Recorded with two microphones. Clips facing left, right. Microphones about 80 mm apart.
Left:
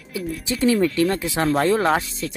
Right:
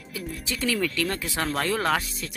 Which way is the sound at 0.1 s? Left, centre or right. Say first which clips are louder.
Left 7 dB; left.